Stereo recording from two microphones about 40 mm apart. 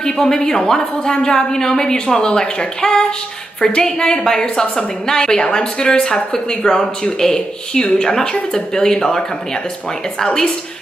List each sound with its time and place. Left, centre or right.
0.0 s a woman's voice: centre